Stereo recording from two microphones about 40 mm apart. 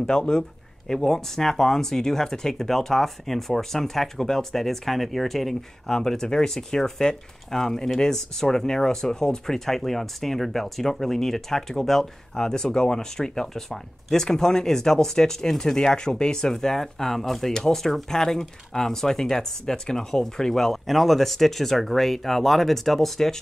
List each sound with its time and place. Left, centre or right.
0.0 s speech: centre